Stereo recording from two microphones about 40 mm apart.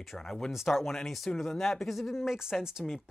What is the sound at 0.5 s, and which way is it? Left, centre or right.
Speech, centre.